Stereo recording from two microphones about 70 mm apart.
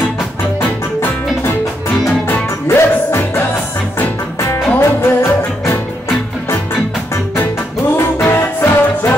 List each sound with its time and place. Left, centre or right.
0.6 s music: left
4.7 s music: left
8.2 s music: left